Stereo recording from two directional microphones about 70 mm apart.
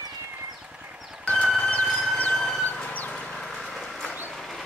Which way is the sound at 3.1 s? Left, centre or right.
Centre.